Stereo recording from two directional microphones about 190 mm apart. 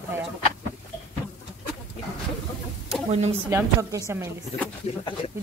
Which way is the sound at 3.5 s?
15° right (ahead or behind).